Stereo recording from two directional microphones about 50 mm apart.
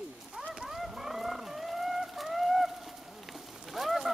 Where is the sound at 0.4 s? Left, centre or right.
Right.